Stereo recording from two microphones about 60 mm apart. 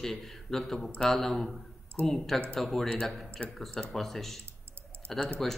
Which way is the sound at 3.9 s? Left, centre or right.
Centre.